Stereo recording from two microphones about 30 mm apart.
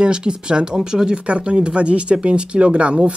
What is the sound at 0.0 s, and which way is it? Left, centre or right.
Speech, right.